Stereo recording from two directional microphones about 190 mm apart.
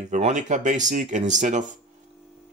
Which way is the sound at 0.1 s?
40° right (ahead or behind).